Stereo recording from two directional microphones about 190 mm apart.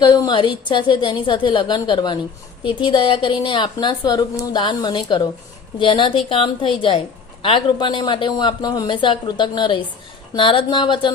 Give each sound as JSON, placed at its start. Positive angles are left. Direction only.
{"t": 0.0, "sound": "a woman's voice", "side_deg": 20}